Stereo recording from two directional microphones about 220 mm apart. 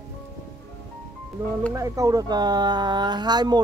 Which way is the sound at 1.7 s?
15° right (ahead or behind).